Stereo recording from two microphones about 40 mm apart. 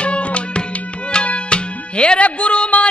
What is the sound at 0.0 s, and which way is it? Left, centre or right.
Music, left.